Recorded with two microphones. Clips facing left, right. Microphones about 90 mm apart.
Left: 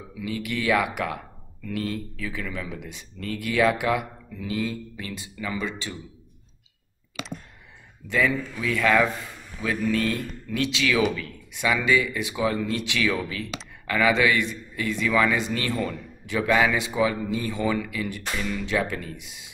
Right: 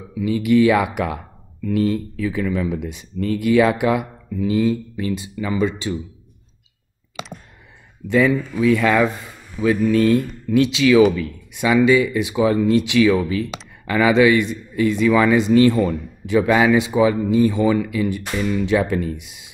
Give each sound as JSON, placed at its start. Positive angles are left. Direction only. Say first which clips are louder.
{"t": 0.2, "sound": "a man's voice", "louder": "right 14 dB", "side_deg": -20}
{"t": 7.2, "sound": "clicking", "louder": "right 3 dB", "side_deg": -20}
{"t": 8.1, "sound": "a man's voice", "louder": "right 7 dB", "side_deg": -20}